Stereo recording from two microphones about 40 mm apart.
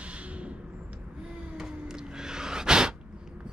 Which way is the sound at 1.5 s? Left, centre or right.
Centre.